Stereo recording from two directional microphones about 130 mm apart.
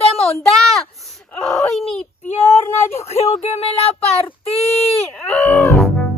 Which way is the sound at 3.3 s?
50° left (ahead or behind).